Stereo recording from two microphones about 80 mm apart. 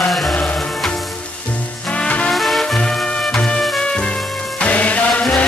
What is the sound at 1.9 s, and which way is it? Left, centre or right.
Music, centre.